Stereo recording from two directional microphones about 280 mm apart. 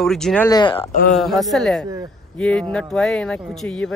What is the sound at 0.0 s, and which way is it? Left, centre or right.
Speech, centre.